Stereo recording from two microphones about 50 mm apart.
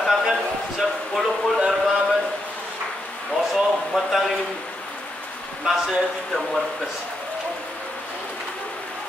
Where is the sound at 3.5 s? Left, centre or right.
Centre.